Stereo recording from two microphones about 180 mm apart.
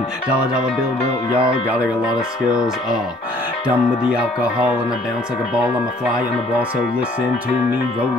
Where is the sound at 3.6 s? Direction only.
5° right (ahead or behind).